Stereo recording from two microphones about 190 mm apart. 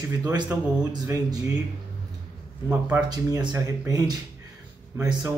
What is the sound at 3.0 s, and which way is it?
Speech, 20° right (ahead or behind).